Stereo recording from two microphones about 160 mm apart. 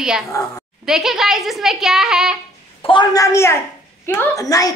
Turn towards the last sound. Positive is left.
turn(degrees=20)  # may be behind; listen again after turning